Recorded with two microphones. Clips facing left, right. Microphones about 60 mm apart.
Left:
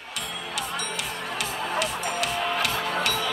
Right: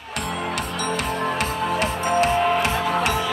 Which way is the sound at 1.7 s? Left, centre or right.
Right.